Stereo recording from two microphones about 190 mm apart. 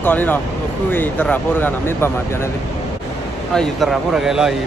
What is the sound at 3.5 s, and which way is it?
Speech, centre (ahead or behind).